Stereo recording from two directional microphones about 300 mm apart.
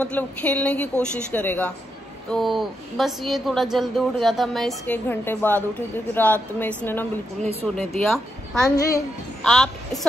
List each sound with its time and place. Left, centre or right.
0.0 s a child's voice: centre
8.6 s a child's voice: centre